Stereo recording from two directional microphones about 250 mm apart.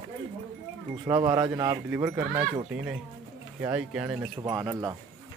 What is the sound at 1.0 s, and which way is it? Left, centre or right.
Speech, centre.